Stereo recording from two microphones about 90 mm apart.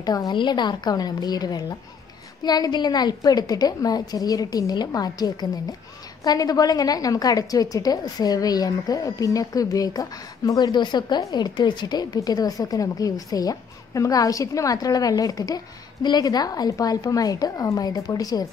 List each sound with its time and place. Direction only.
0.0 s a woman's voice: 45° left (ahead or behind)